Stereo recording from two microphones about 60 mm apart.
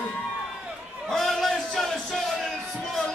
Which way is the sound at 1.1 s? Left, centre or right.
Centre.